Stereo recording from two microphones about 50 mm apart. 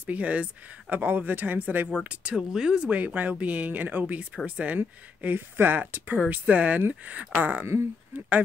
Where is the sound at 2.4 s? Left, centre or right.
Centre.